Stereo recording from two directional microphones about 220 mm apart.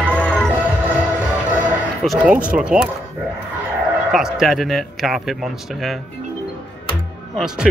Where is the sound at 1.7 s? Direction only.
5° right (ahead or behind).